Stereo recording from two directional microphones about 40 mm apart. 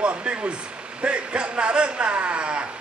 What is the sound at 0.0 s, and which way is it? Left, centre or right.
Speech, right.